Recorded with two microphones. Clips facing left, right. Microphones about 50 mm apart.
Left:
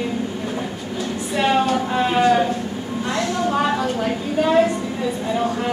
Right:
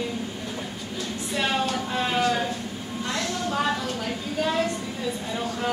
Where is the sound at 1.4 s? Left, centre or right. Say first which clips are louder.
Left 8 dB; left.